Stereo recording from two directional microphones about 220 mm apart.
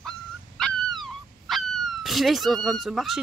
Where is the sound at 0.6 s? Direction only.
Centre (ahead or behind).